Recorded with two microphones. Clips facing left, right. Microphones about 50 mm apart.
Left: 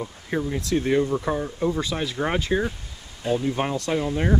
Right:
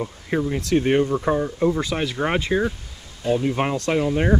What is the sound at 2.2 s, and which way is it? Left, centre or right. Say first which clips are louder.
Speech: right 2 dB; right.